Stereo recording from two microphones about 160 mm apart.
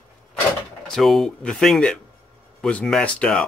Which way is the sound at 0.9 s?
Centre (ahead or behind).